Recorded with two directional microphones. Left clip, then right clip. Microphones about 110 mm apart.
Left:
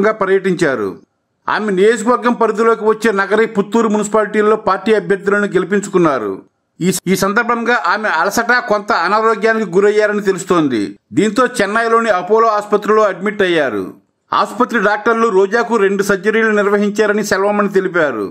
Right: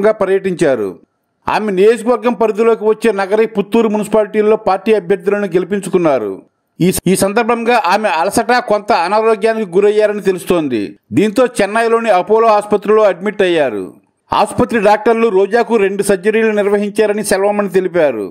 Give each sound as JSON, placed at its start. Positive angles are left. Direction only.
{"t": 0.0, "sound": "a man's voice", "side_deg": -50}